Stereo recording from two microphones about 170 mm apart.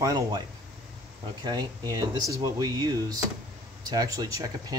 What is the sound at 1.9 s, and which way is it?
Speech, 20° right (ahead or behind).